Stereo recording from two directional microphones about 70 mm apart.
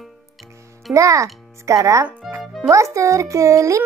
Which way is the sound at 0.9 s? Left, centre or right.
Right.